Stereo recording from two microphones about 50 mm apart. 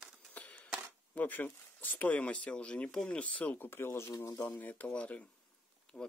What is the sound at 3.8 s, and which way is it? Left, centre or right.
Speech, left.